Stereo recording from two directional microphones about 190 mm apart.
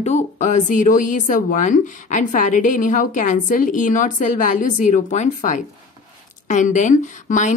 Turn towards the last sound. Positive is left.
turn(degrees=40)  # may be behind; listen again after turning